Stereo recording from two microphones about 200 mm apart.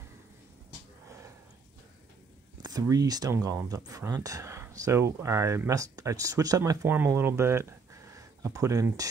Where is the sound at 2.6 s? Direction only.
20° right (ahead or behind).